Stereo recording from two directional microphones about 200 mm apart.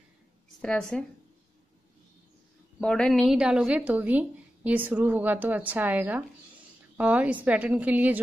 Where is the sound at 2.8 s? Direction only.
5° left (ahead or behind).